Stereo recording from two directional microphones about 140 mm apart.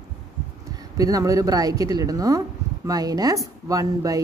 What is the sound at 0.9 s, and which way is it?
Speech, 25° right (ahead or behind).